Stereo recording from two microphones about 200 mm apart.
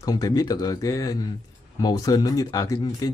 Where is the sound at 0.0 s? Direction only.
20° left (ahead or behind).